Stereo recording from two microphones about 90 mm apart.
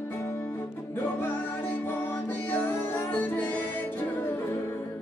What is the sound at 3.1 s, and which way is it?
Music, 20° left (ahead or behind).